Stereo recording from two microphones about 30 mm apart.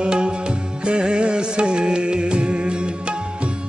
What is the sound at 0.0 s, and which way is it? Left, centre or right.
Music, right.